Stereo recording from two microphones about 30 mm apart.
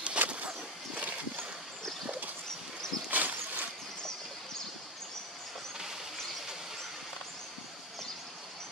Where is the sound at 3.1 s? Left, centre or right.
Right.